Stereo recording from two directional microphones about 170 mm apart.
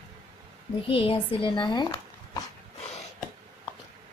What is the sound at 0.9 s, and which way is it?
A child's voice, 35° left (ahead or behind).